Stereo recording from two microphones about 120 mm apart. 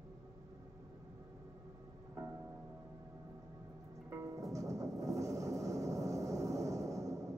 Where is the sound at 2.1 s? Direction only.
20° right (ahead or behind).